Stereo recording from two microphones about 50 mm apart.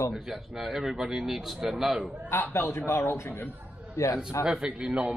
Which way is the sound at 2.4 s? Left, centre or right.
Left.